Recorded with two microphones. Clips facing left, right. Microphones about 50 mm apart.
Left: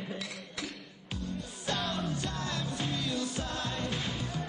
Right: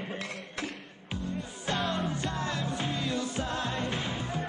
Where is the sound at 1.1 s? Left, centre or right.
Right.